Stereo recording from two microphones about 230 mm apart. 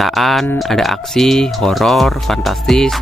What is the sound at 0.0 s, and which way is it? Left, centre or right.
Speech, centre.